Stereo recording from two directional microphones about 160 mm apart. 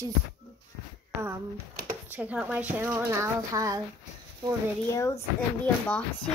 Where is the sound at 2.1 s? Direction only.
10° right (ahead or behind).